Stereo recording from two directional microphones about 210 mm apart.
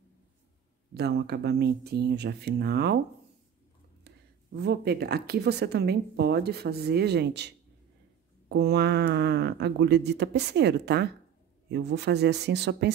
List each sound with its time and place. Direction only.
0.9 s speech: 50° right (ahead or behind)
4.6 s speech: 50° right (ahead or behind)